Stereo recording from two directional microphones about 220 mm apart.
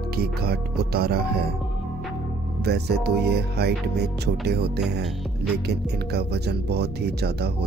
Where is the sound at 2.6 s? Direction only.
50° right (ahead or behind).